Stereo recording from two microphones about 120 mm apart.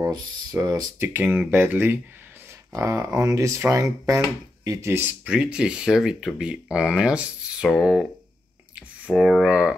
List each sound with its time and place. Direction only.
0.0 s speech: 30° right (ahead or behind)
1.0 s speech: 15° right (ahead or behind)
5.2 s speech: 5° right (ahead or behind)
9.1 s speech: centre (ahead or behind)